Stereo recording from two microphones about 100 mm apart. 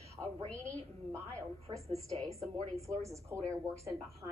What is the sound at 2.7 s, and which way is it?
Speech, 30° right (ahead or behind).